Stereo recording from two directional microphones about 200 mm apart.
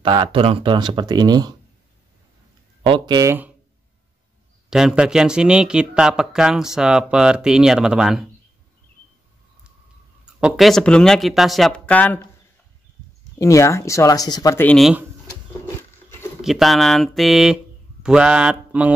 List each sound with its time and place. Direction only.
0.0 s speech: 25° right (ahead or behind)
2.8 s speech: 25° right (ahead or behind)
4.6 s speech: 5° right (ahead or behind)
10.2 s speech: 5° right (ahead or behind)
13.4 s speech: 15° left (ahead or behind); by 15.0 s centre (ahead or behind)
16.3 s speech: centre (ahead or behind)